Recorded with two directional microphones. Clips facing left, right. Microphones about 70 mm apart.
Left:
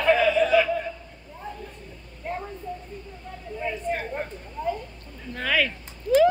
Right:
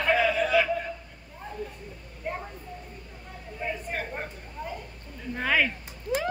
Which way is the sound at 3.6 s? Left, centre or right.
Centre.